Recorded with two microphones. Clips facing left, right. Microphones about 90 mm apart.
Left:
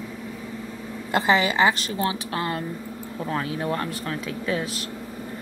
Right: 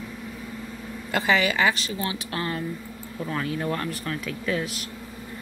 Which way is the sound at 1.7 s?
45° left (ahead or behind).